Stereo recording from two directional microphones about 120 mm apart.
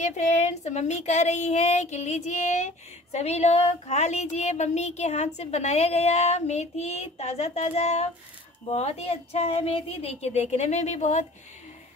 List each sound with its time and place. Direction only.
0.0 s speech: 75° left (ahead or behind)